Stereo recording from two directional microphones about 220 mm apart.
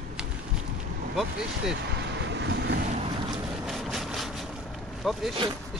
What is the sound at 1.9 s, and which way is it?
Vehicle, 55° right (ahead or behind).